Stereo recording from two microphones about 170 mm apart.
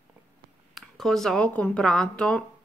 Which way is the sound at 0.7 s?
Centre (ahead or behind).